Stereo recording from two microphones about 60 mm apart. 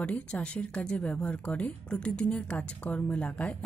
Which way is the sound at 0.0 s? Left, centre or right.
Centre.